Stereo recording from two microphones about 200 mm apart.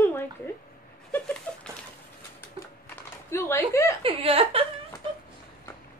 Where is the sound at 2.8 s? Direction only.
10° left (ahead or behind).